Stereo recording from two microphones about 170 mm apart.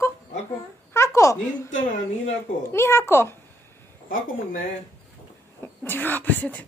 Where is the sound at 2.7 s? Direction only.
15° left (ahead or behind).